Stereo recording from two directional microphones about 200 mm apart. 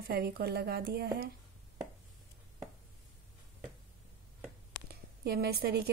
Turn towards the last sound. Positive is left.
turn(degrees=-50)  # may be behind; listen again after turning